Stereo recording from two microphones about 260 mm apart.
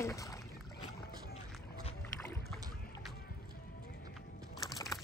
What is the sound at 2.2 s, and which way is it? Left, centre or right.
Boat, centre.